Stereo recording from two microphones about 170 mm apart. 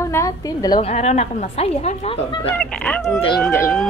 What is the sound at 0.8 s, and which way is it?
A woman's voice, 40° left (ahead or behind).